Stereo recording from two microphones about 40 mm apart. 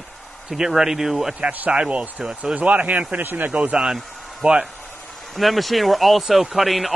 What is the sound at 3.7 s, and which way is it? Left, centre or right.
Speech, centre.